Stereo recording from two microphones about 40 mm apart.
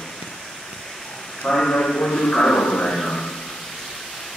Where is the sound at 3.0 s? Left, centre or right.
Centre.